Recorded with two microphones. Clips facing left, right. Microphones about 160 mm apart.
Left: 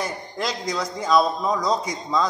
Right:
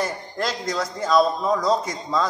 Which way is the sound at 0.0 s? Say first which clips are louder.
Right 2 dB; centre (ahead or behind).